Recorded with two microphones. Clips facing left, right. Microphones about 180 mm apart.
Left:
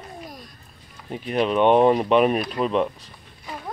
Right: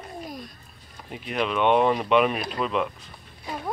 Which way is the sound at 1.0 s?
35° left (ahead or behind).